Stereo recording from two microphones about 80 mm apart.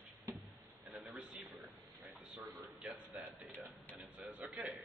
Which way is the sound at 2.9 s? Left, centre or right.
Right.